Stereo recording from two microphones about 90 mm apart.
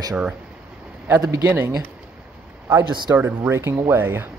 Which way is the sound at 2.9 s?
60° right (ahead or behind).